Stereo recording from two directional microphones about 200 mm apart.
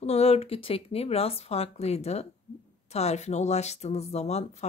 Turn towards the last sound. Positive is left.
turn(degrees=35)  # may be behind; listen again after turning